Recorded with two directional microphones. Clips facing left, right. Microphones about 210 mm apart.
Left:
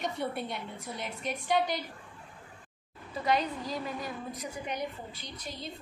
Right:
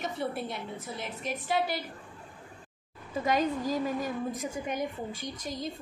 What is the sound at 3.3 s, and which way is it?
A woman's voice, 45° right (ahead or behind).